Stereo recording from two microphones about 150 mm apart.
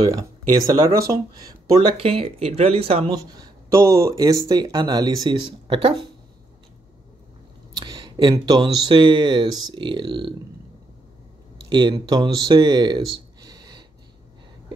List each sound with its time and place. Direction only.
0.7 s speech: 25° right (ahead or behind); by 3.2 s 40° right (ahead or behind)
3.2 s speech: 25° right (ahead or behind)
7.7 s speech: 30° right (ahead or behind)
11.7 s speech: 30° right (ahead or behind)
13.5 s a sound: 30° right (ahead or behind)